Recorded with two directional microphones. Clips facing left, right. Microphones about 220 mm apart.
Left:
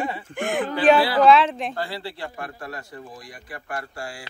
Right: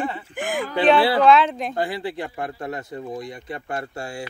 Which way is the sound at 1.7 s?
20° right (ahead or behind).